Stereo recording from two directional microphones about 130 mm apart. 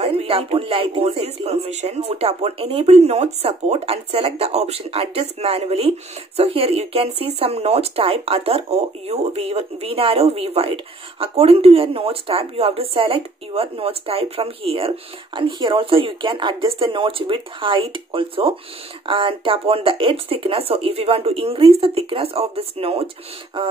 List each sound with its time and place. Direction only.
0.0 s speech: 50° right (ahead or behind)